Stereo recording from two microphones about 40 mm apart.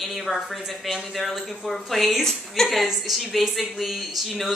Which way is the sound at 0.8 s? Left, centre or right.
Centre.